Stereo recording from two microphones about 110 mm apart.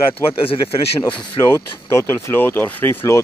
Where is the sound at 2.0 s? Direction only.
25° left (ahead or behind).